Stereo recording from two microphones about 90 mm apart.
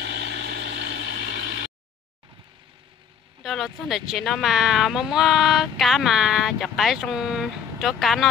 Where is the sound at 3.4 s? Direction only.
Centre (ahead or behind).